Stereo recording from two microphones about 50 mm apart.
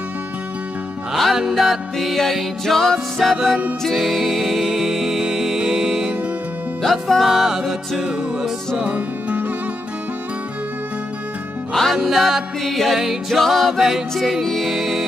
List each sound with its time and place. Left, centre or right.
1.1 s music: centre
6.8 s music: centre
7.2 s music: centre
8.0 s music: centre
8.9 s music: right
11.7 s music: centre
12.0 s music: centre